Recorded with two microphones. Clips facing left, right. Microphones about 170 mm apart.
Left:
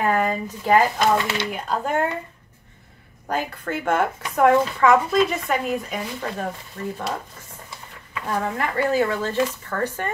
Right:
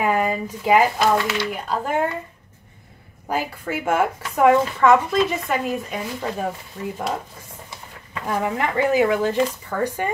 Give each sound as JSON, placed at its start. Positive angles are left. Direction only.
{"t": 0.0, "sound": "a woman's voice", "side_deg": -10}
{"t": 3.3, "sound": "a woman's voice", "side_deg": -10}
{"t": 8.3, "sound": "speech", "side_deg": -15}